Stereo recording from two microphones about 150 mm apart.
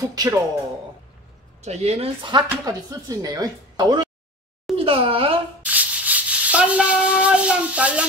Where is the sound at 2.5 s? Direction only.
20° right (ahead or behind).